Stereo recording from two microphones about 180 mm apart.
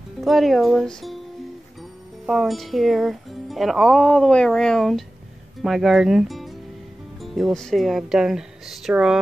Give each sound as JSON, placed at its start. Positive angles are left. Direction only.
{"t": 0.2, "sound": "speech", "side_deg": 0}
{"t": 1.8, "sound": "music", "side_deg": 0}
{"t": 5.6, "sound": "speech", "side_deg": 0}